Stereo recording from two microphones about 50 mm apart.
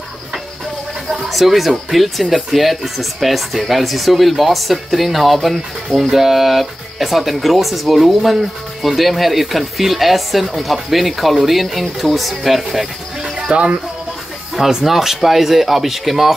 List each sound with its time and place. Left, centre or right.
1.3 s speech: centre
13.5 s speech: right
14.5 s speech: centre